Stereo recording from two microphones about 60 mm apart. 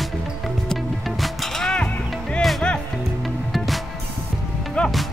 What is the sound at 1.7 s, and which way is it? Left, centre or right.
Music, centre.